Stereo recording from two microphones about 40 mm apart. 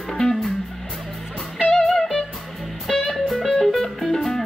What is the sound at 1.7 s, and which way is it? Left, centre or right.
Music, centre.